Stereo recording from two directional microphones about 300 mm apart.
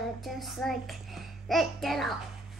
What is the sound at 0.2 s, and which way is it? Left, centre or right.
A child's voice, centre.